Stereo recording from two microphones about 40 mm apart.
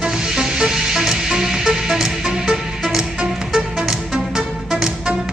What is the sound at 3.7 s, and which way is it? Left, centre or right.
Music, centre.